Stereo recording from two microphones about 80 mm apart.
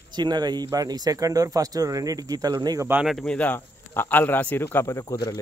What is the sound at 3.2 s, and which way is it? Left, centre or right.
Speech, centre.